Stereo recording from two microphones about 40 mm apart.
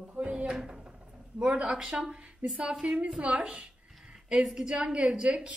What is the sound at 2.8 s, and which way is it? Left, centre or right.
Speech, right.